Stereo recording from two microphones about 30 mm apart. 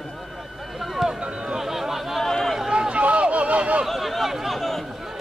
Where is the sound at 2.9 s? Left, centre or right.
Right.